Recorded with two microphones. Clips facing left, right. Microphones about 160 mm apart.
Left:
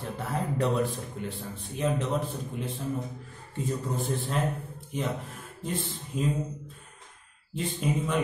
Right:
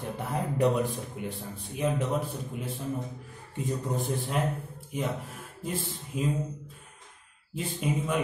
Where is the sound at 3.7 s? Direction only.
15° right (ahead or behind).